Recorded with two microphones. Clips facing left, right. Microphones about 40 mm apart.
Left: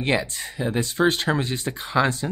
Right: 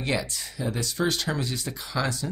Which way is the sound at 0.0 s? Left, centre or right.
Left.